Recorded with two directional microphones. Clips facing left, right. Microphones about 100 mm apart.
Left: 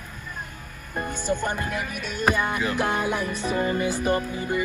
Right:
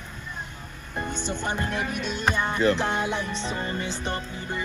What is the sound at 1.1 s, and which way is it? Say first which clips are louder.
Speech: left 6 dB; 10° left (ahead or behind).